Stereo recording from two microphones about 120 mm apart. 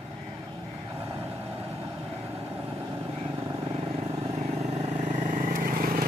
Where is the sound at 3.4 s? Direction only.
60° right (ahead or behind).